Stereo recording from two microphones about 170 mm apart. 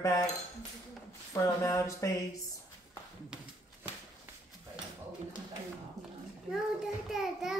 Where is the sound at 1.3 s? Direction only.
15° left (ahead or behind).